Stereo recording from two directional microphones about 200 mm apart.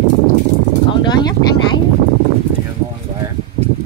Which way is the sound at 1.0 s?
20° left (ahead or behind).